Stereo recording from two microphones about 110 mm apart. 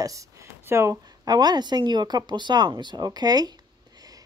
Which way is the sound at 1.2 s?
40° right (ahead or behind).